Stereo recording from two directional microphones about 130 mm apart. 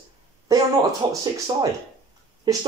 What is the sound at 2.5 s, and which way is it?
Speech, 30° right (ahead or behind).